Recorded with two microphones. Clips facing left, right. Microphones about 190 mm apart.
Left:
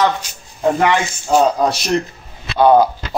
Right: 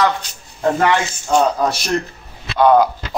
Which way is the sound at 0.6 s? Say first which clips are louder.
Left 1 dB; 10° left (ahead or behind).